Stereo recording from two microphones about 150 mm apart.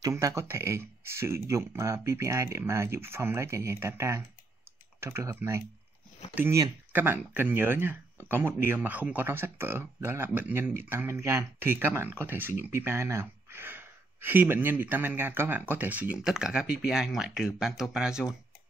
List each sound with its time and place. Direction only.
0.0 s speech: 20° right (ahead or behind); by 18.3 s 5° right (ahead or behind)